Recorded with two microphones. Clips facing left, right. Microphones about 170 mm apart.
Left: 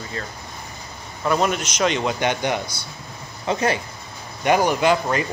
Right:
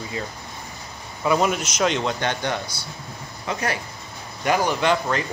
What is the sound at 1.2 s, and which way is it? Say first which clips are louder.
Speech: even; centre (ahead or behind).